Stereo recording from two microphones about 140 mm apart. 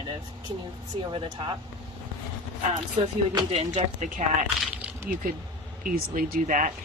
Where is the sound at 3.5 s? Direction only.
55° right (ahead or behind).